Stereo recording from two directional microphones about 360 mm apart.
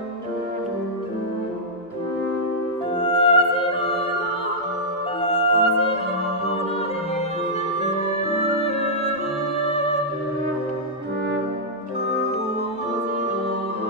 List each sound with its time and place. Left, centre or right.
3.0 s music: centre
5.3 s music: centre